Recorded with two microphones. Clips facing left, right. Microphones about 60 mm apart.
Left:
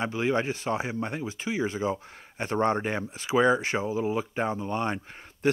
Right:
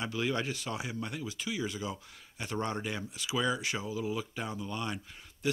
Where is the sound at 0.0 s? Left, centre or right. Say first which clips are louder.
Left 6 dB; left.